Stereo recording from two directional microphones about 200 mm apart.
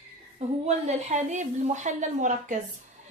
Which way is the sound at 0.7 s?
35° right (ahead or behind).